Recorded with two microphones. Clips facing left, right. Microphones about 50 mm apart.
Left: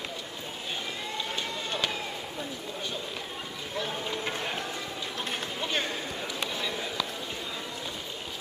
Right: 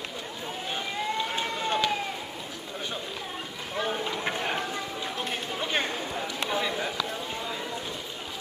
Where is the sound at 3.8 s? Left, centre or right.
Right.